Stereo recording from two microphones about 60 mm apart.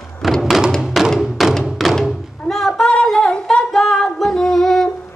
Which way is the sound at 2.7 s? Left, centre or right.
Centre.